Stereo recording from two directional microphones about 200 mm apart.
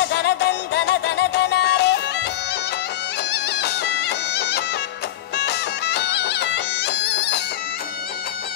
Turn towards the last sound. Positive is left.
turn(degrees=60)  # may be behind; listen again after turning